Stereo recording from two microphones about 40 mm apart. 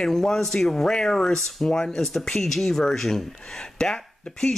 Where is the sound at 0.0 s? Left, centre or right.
Centre.